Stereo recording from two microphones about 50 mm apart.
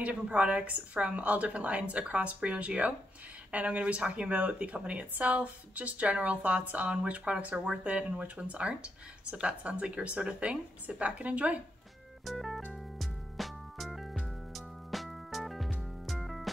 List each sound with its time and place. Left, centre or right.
0.0 s speech: right
12.3 s music: centre